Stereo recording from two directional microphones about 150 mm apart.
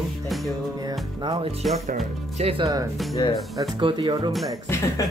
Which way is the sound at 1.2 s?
35° right (ahead or behind).